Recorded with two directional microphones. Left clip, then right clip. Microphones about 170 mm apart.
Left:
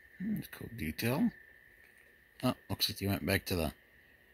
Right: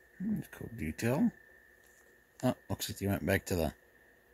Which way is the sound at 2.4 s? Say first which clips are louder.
Left 1 dB; 10° right (ahead or behind).